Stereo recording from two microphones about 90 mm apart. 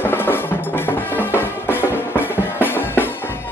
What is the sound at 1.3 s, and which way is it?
Music, 20° right (ahead or behind).